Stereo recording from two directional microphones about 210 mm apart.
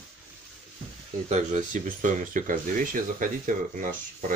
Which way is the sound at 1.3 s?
35° right (ahead or behind).